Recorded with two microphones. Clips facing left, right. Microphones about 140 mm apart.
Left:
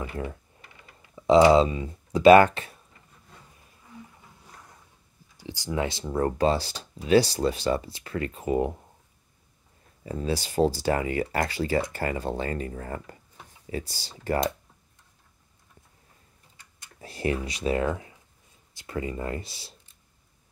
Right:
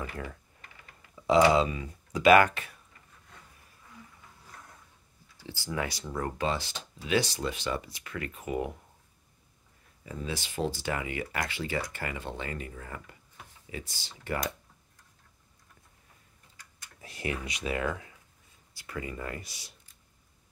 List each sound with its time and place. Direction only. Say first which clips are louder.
0.0 s speech: left 5 dB; 30° left (ahead or behind)
5.4 s speech: left 5 dB; 15° left (ahead or behind)
10.0 s speech: left 7 dB; 35° left (ahead or behind)
16.5 s a sound: left 2 dB; 35° left (ahead or behind)
18.7 s speech: left 6 dB; 25° left (ahead or behind)